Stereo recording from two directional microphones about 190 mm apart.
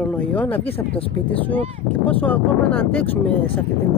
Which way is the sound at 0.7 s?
30° left (ahead or behind).